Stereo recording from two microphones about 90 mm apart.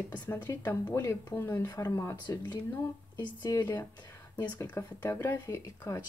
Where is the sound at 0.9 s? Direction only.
35° left (ahead or behind).